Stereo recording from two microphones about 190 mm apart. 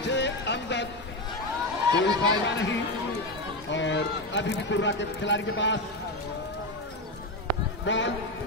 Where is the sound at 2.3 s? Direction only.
70° left (ahead or behind).